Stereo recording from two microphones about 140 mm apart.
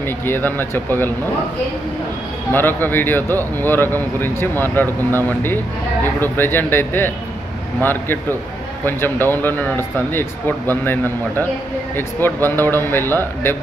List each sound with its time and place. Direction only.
0.0 s speech: 15° left (ahead or behind)
2.5 s speech: 15° left (ahead or behind)